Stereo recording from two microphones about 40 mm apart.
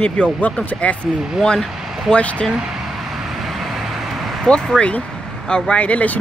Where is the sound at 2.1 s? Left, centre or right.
Left.